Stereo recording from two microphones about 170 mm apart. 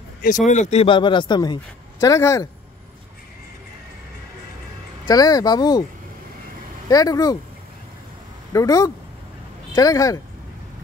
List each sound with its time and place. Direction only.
0.5 s a man's voice: 40° left (ahead or behind); by 2.4 s 20° left (ahead or behind)
5.0 s a man's voice: 20° left (ahead or behind)
6.9 s a man's voice: 20° left (ahead or behind)
8.5 s a man's voice: 20° left (ahead or behind)